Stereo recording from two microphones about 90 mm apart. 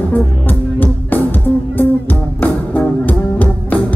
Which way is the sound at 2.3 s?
20° left (ahead or behind).